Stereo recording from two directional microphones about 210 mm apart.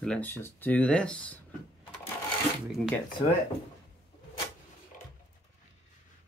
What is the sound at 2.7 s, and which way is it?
Speech, centre (ahead or behind).